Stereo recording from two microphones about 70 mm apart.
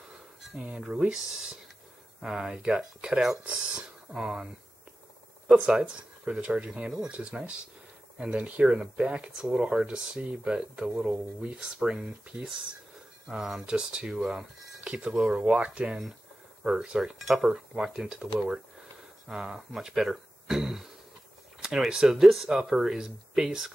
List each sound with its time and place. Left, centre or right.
0.6 s speech: centre
5.6 s speech: centre